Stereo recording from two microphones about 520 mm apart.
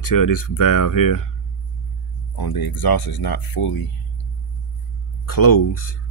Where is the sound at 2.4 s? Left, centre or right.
Left.